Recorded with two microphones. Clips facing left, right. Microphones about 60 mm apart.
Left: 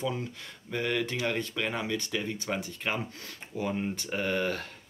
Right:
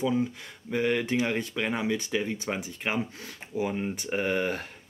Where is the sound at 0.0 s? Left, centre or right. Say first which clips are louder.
Right 6 dB; centre.